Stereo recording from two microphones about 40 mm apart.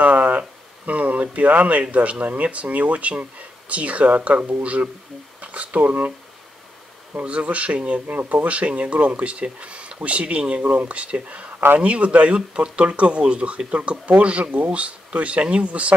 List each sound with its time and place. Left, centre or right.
0.0 s a sound: right
1.7 s speech: right
7.2 s speech: right
8.1 s speech: right
8.5 s speech: right
10.6 s speech: right
12.4 s speech: right
13.7 s speech: right